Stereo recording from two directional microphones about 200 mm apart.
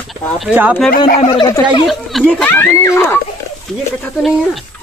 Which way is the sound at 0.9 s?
45° left (ahead or behind).